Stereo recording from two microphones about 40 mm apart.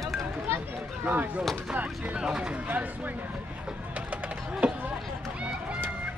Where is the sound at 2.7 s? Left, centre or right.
Right.